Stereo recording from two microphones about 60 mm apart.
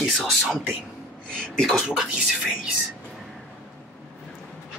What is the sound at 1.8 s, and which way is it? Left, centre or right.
Speech, centre.